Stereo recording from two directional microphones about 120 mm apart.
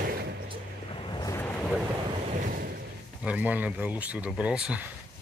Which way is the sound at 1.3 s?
15° left (ahead or behind).